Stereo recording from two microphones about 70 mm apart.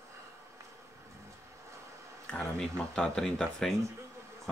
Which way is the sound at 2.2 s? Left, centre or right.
Centre.